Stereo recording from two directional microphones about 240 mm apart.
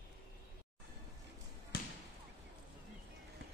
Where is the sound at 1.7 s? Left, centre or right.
Left.